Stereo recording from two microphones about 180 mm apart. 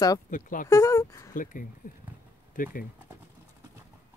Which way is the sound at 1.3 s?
50° left (ahead or behind).